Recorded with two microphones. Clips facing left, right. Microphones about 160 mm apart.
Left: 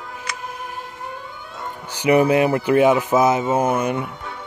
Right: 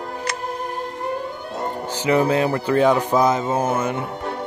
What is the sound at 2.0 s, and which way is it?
A man's voice, 15° left (ahead or behind).